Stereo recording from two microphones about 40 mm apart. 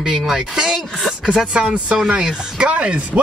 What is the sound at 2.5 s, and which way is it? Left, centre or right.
Speech, right.